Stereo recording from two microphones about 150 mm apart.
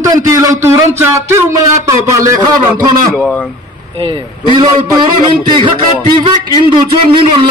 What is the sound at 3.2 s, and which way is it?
Speech, 5° left (ahead or behind).